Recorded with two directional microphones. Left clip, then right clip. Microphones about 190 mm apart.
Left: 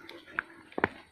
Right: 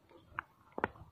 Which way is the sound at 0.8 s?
60° left (ahead or behind).